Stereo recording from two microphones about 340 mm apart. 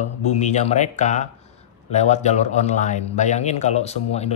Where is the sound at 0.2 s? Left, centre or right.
Centre.